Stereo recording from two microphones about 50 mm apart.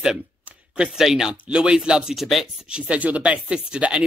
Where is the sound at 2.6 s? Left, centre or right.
Right.